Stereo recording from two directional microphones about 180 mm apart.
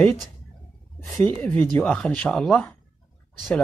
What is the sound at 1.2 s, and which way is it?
Speech, 10° left (ahead or behind).